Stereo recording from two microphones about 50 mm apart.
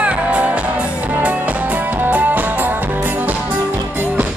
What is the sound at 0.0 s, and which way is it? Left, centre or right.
Music, right.